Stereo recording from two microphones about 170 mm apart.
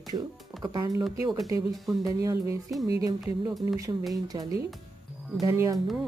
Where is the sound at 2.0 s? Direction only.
20° right (ahead or behind).